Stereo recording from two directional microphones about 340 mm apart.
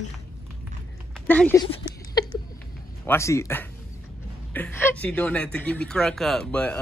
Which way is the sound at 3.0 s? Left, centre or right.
Centre.